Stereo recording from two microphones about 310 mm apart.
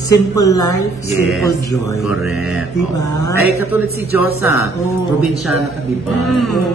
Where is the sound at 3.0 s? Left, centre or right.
Centre.